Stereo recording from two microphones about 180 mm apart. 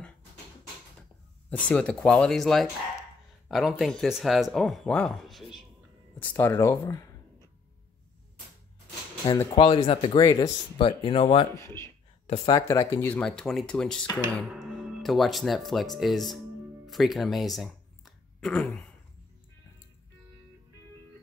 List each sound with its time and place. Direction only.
1.7 s speech: 5° left (ahead or behind)
6.1 s speech: 10° left (ahead or behind)
9.5 s speech: 25° left (ahead or behind)
11.5 s speech: 15° left (ahead or behind)